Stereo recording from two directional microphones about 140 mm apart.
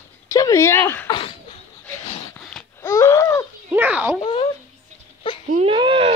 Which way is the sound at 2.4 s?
5° left (ahead or behind).